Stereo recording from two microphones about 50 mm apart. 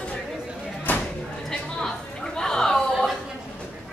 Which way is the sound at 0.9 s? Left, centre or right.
Left.